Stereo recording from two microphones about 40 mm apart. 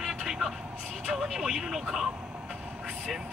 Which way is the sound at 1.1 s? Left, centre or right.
Centre.